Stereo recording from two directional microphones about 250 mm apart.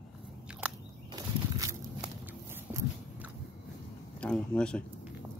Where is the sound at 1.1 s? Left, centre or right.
Centre.